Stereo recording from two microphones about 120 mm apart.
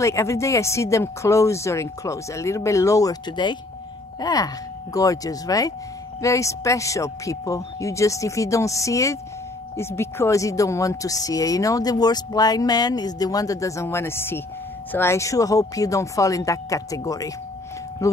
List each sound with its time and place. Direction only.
0.0 s speech: 25° left (ahead or behind)